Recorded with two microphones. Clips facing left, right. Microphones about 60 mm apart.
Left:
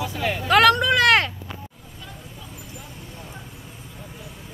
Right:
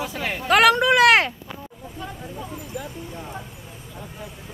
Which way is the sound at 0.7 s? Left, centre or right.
Centre.